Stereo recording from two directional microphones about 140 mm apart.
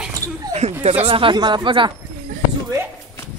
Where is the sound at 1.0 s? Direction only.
40° right (ahead or behind).